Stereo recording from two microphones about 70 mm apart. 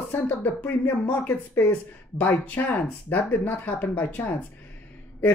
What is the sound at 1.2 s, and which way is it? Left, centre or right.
Speech, left.